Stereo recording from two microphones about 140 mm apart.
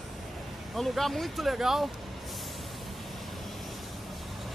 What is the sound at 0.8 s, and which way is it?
Speech, centre (ahead or behind).